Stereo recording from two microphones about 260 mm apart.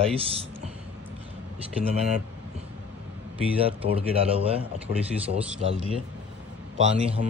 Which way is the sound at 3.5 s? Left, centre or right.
Right.